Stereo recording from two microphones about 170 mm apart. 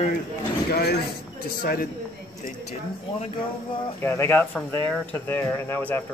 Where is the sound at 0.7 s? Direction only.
65° left (ahead or behind).